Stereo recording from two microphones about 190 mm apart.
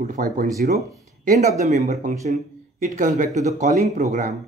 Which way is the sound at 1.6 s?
40° right (ahead or behind).